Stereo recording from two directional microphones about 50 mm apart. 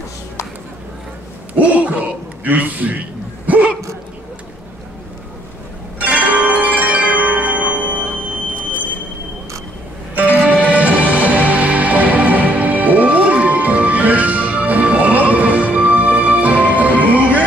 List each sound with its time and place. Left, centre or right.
1.5 s a sound: right
5.9 s zither: right
10.1 s music: right